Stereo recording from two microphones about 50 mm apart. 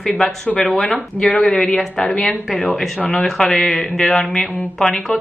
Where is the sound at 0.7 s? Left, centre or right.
Centre.